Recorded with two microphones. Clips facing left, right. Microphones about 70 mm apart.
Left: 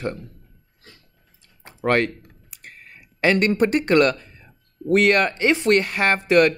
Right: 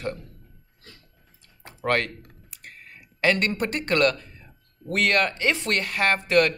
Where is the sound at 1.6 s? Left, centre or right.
Left.